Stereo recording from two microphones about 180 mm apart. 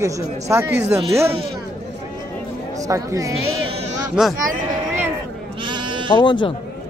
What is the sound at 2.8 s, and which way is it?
Speech, 15° right (ahead or behind).